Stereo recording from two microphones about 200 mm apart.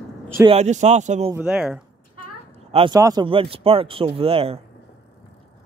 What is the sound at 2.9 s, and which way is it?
Speech, 20° right (ahead or behind).